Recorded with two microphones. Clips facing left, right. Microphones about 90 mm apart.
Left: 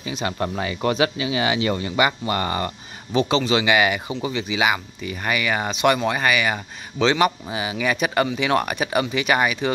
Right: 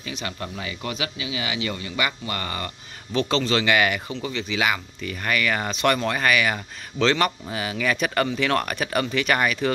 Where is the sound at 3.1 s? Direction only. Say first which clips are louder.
Left 3 dB; 10° left (ahead or behind).